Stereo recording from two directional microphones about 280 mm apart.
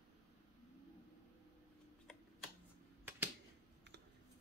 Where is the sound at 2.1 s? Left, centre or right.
Centre.